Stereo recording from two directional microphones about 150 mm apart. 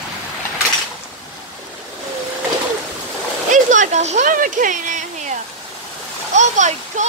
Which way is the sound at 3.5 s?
55° right (ahead or behind).